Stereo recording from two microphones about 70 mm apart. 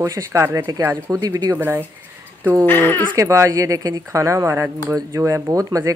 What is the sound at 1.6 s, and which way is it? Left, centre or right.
Speech, right.